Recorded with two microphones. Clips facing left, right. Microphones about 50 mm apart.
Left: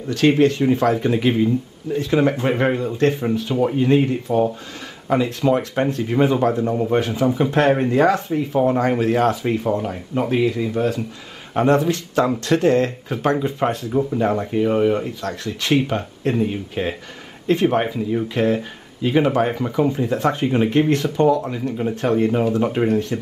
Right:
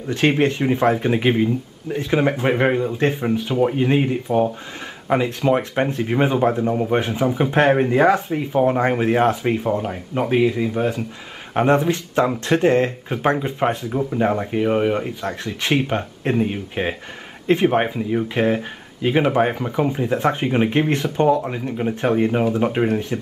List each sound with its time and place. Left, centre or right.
0.4 s speech: right